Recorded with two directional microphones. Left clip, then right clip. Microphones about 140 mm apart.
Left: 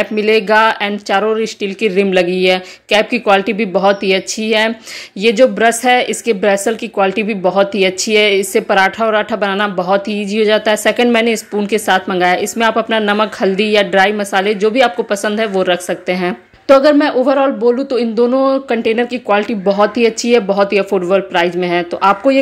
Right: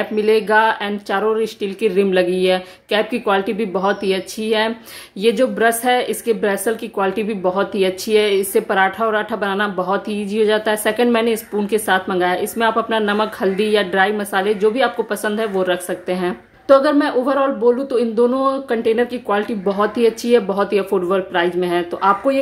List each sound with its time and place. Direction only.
0.0 s a woman's voice: 20° left (ahead or behind)